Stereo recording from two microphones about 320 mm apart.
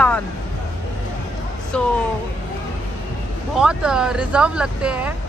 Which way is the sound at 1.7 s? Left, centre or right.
Centre.